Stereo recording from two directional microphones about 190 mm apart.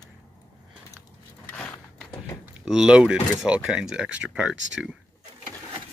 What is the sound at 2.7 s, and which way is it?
Speech, 5° right (ahead or behind).